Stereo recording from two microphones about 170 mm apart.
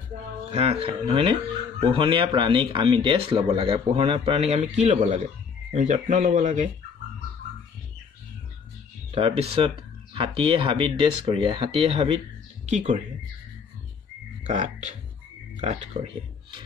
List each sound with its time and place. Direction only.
0.5 s speech: 35° right (ahead or behind)
9.1 s speech: 35° right (ahead or behind)
14.5 s speech: 45° right (ahead or behind)